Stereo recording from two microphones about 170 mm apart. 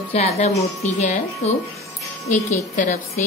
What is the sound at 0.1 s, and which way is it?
A woman's voice, 40° left (ahead or behind).